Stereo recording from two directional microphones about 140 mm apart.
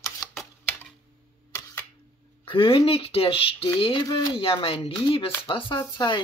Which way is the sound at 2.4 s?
40° left (ahead or behind).